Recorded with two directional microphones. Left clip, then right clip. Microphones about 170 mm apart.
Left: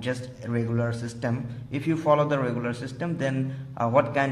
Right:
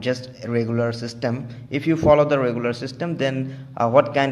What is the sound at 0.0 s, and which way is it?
A man's voice, 25° right (ahead or behind).